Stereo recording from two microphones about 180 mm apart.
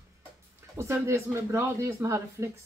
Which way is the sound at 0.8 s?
15° right (ahead or behind).